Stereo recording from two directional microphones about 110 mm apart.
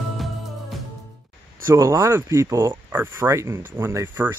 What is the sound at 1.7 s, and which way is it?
Speech, 25° right (ahead or behind).